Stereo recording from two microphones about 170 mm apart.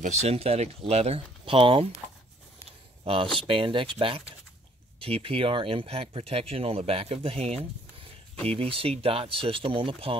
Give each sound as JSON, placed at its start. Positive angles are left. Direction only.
{"t": 0.0, "sound": "speech", "side_deg": -40}
{"t": 3.0, "sound": "a sound", "side_deg": -30}
{"t": 3.3, "sound": "speech", "side_deg": -30}